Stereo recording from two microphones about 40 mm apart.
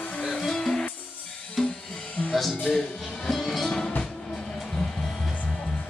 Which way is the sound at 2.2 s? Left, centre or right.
Left.